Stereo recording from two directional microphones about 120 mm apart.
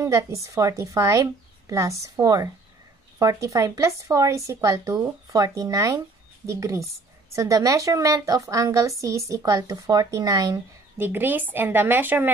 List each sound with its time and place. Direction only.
0.0 s a woman's voice: 25° right (ahead or behind)
11.0 s speech: 15° right (ahead or behind)